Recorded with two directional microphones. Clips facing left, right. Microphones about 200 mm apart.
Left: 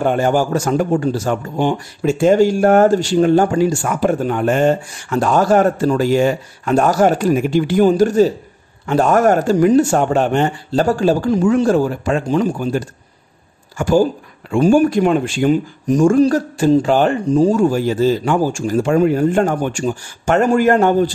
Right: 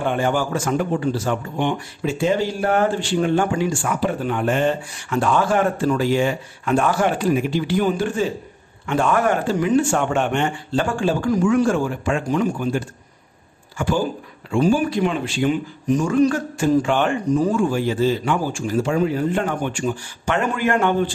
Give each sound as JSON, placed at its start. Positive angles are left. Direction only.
{"t": 0.0, "sound": "speech", "side_deg": 40}
{"t": 11.2, "sound": "speech", "side_deg": 25}